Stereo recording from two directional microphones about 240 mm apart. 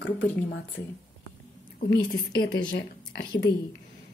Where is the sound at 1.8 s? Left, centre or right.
Left.